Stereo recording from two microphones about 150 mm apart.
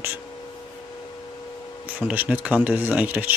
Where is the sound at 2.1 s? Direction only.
10° right (ahead or behind).